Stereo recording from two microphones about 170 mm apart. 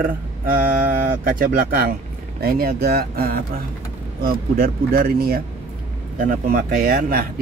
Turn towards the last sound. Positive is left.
turn(degrees=-60)  # may be behind; listen again after turning